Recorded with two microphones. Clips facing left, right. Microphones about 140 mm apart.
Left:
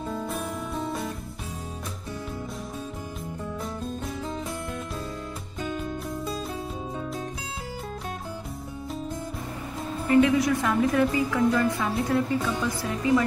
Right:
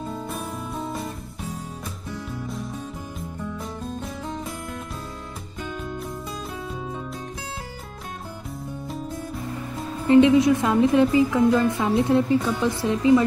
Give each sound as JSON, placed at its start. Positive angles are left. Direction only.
{"t": 10.0, "sound": "a woman's voice", "side_deg": -25}